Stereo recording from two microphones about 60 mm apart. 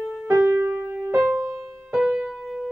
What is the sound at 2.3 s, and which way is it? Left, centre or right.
Music, centre.